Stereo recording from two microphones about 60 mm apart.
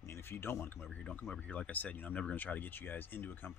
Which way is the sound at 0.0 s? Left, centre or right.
Left.